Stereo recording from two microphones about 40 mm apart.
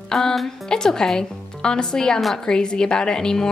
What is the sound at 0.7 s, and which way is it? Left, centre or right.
A woman's voice, centre.